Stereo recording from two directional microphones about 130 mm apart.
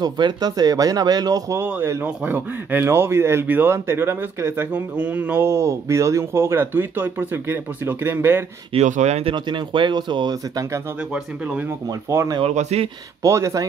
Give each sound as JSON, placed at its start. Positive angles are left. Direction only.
{"t": 0.0, "sound": "speech", "side_deg": -30}
{"t": 8.8, "sound": "speech", "side_deg": -65}
{"t": 9.3, "sound": "speech", "side_deg": -35}
{"t": 11.1, "sound": "speech", "side_deg": -5}
{"t": 11.9, "sound": "speech", "side_deg": -25}
{"t": 12.4, "sound": "speech", "side_deg": -60}
{"t": 13.2, "sound": "speech", "side_deg": -25}